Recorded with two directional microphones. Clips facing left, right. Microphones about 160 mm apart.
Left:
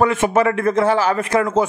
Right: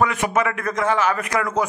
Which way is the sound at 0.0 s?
30° left (ahead or behind).